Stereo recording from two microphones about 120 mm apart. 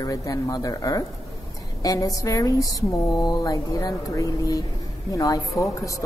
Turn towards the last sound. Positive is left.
turn(degrees=30)  # may be behind; listen again after turning